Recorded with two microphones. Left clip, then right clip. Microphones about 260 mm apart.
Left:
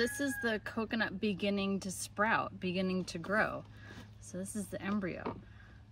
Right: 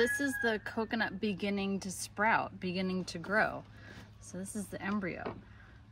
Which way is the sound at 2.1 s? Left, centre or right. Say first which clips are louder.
Right 2 dB; centre.